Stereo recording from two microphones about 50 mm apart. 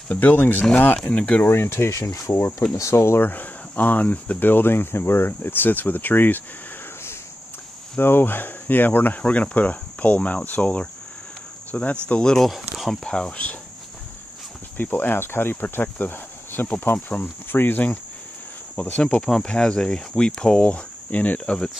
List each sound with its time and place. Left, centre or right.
0.1 s speech: left
0.9 s cricket: left
1.4 s speech: left
2.1 s speech: left
3.3 s speech: left
8.0 s speech: left
9.2 s cricket: left
12.4 s speech: centre
12.9 s speech: centre
14.8 s speech: left
18.8 s cricket: left
19.2 s speech: centre; by 21.5 s left